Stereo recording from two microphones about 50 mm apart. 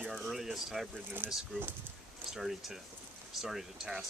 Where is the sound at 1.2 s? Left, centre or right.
Right.